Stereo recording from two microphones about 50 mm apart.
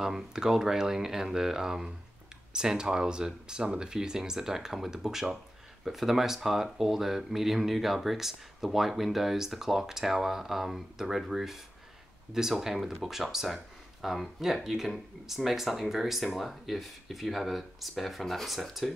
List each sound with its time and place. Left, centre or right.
0.0 s speech: centre